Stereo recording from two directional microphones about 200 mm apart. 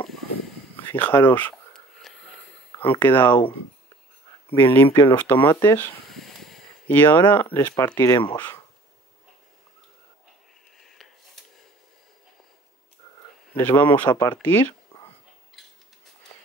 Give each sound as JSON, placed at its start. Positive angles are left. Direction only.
{"t": 0.7, "sound": "speech", "side_deg": 10}
{"t": 2.1, "sound": "wheeze", "side_deg": 0}
{"t": 2.8, "sound": "speech", "side_deg": 10}
{"t": 4.6, "sound": "speech", "side_deg": 10}
{"t": 5.4, "sound": "speech", "side_deg": 20}
{"t": 5.8, "sound": "a sound", "side_deg": 0}
{"t": 6.9, "sound": "speech", "side_deg": 10}
{"t": 13.6, "sound": "speech", "side_deg": 10}